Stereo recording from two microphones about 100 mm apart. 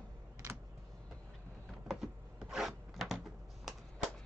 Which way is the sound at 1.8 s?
5° right (ahead or behind).